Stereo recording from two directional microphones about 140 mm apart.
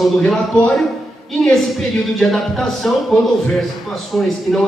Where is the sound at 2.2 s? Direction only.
Centre (ahead or behind).